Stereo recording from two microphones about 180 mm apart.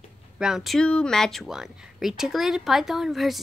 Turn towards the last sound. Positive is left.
turn(degrees=0)  # may be behind; listen again after turning